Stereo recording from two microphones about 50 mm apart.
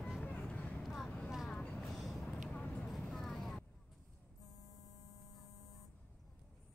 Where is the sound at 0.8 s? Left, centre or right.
Centre.